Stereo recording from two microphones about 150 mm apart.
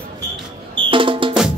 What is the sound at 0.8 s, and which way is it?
Music, 35° right (ahead or behind).